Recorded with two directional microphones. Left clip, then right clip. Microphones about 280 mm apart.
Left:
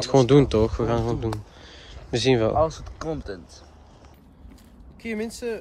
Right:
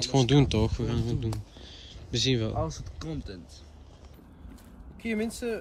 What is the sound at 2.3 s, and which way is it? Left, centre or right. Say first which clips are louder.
Speech: left 11 dB; left.